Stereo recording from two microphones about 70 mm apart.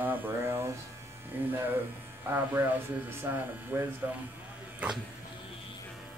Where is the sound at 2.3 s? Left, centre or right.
Right.